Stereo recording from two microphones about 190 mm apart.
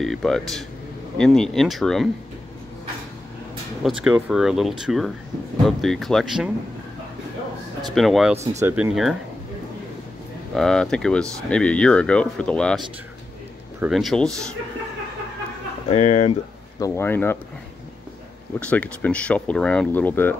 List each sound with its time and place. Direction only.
0.0 s speech: centre (ahead or behind)
3.8 s speech: 5° right (ahead or behind)
7.9 s speech: centre (ahead or behind)
8.5 s speech: 10° right (ahead or behind)
10.5 s speech: 5° left (ahead or behind)
15.9 s speech: 35° left (ahead or behind)
16.8 s speech: 15° left (ahead or behind)
18.6 s speech: 5° left (ahead or behind)